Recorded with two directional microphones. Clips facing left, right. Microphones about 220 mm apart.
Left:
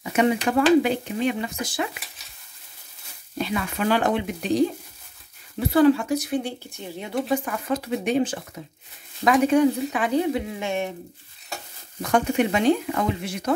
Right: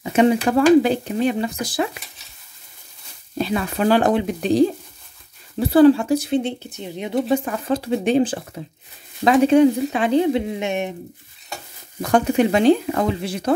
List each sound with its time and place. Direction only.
0.0 s speech: 30° right (ahead or behind)
3.3 s a woman's voice: 35° right (ahead or behind); by 11.0 s 20° right (ahead or behind)
12.0 s speech: 35° right (ahead or behind)